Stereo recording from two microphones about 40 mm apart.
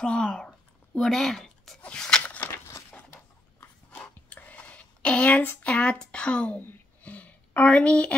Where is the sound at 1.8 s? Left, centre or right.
Left.